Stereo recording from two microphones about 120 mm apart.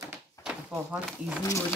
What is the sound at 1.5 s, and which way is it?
Speech, 25° left (ahead or behind).